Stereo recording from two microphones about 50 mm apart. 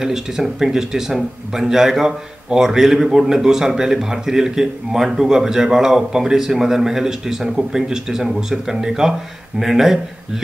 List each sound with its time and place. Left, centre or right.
0.0 s speech: centre